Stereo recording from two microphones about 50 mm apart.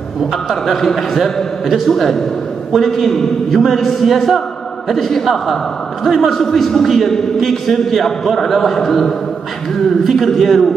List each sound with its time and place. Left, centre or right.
0.5 s a man's voice: centre